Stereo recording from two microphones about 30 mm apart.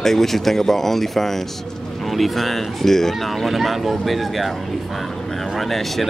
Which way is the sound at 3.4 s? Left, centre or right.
Centre.